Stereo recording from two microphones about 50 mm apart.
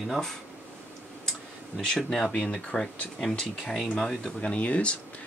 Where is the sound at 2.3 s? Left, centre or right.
Left.